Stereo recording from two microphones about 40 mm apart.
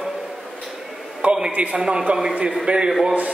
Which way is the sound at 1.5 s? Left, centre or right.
Right.